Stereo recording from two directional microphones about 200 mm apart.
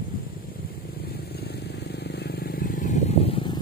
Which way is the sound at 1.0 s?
50° left (ahead or behind).